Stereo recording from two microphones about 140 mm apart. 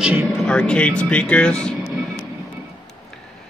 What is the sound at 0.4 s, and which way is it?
Speech, 5° left (ahead or behind).